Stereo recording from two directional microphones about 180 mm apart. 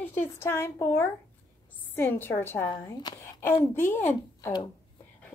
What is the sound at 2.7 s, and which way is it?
A woman's voice, 25° left (ahead or behind).